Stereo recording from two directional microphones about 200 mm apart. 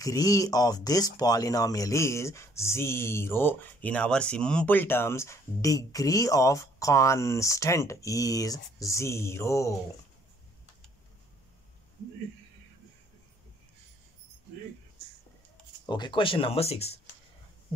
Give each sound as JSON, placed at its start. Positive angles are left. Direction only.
{"t": 0.0, "sound": "speech", "side_deg": 15}
{"t": 15.9, "sound": "speech", "side_deg": 25}